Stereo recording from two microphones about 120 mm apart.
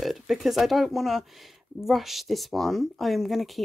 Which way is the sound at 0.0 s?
Centre (ahead or behind).